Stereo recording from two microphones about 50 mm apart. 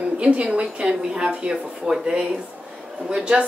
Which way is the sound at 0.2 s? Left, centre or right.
Right.